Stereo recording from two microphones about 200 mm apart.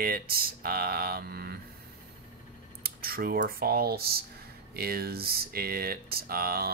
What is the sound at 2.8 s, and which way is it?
Speech, 50° right (ahead or behind).